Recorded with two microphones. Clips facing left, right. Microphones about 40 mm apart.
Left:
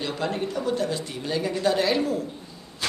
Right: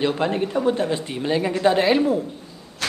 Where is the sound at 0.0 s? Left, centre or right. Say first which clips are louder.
Right 6 dB; right.